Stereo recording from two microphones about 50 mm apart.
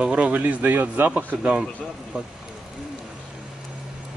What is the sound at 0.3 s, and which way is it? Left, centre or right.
Speech, right.